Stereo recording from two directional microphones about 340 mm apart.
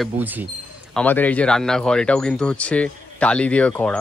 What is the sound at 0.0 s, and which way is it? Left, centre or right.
A man's voice, centre.